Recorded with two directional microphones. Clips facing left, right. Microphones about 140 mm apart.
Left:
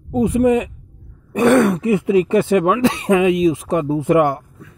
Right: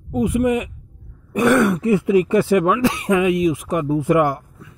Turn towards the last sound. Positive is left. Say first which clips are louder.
# left 2 dB
turn(degrees=25)  # may be behind; listen again after turning